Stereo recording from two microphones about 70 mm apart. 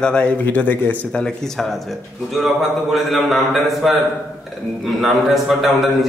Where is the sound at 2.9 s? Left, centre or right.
Centre.